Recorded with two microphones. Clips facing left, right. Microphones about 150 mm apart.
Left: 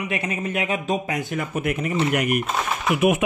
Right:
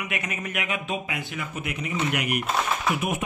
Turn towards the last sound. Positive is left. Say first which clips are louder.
# left 9 dB
turn(degrees=75)  # may be behind; listen again after turning